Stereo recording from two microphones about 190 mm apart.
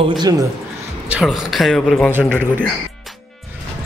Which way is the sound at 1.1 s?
Centre (ahead or behind).